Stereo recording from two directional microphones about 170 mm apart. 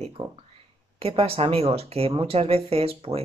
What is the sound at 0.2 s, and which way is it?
Speech, 25° right (ahead or behind).